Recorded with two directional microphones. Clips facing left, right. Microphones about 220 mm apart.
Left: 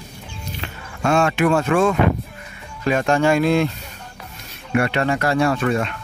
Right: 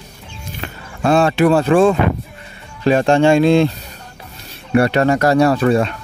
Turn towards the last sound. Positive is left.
turn(degrees=-35)  # may be behind; listen again after turning